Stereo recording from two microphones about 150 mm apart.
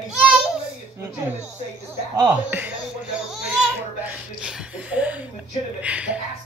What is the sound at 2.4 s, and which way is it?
A child's voice, 10° right (ahead or behind).